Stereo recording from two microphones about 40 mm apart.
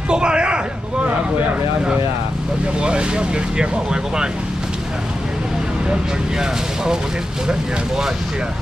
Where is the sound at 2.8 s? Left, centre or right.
Right.